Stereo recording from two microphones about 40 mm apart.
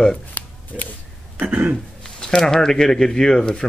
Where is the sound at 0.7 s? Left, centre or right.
Centre.